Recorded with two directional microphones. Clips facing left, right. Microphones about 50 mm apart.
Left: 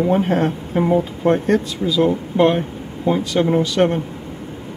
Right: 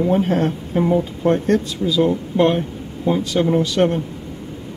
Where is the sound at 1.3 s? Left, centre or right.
Centre.